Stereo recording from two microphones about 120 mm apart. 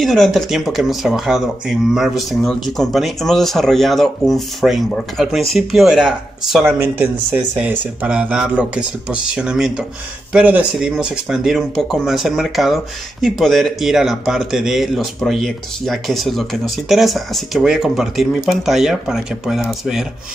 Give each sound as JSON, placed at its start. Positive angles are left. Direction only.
{"t": 0.0, "sound": "speech", "side_deg": 0}
{"t": 6.8, "sound": "speech", "side_deg": -15}